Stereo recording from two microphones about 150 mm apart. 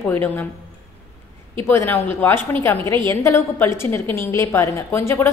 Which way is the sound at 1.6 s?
15° left (ahead or behind).